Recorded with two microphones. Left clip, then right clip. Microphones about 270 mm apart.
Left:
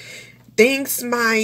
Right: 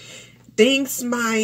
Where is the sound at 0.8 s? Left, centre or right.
Centre.